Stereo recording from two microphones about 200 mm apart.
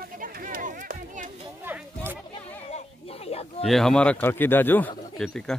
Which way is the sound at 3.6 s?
Centre (ahead or behind).